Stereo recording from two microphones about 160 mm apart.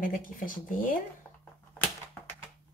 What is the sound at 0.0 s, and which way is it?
Speech, 55° left (ahead or behind).